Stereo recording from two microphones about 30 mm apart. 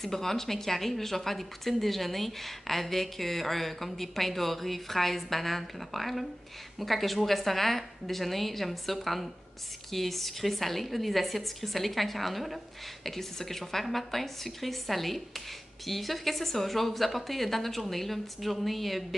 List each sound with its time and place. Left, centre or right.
0.0 s speech: centre